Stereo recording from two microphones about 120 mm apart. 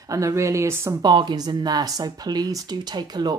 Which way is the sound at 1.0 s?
40° right (ahead or behind).